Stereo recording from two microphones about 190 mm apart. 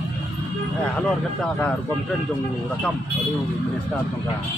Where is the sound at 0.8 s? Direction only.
5° left (ahead or behind).